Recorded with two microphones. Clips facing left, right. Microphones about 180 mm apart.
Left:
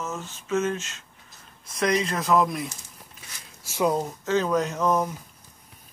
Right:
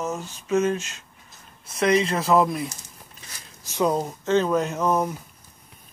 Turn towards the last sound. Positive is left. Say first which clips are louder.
# right 1 dB
turn(degrees=-10)  # may be behind; listen again after turning